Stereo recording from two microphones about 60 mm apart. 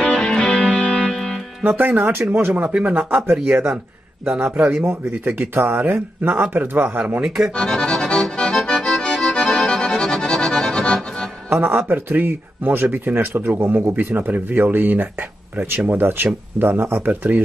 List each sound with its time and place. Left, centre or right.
0.0 s music: centre
1.8 s speech: right
3.3 s speech: right
4.3 s speech: centre
4.8 s speech: right
7.2 s speech: centre
7.5 s accordion: centre
11.5 s speech: right
13.9 s speech: right